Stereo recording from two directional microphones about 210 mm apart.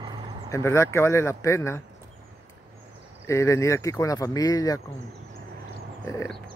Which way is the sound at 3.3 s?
15° left (ahead or behind).